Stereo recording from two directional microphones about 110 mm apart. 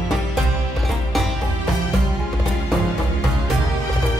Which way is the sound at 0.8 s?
Centre (ahead or behind).